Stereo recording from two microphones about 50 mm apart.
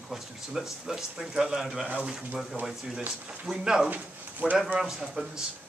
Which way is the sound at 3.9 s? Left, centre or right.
Right.